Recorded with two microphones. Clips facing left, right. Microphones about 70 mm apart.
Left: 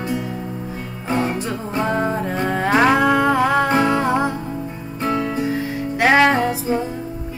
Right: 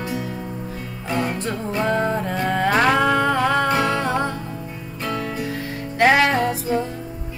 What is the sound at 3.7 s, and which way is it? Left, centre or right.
Music, left.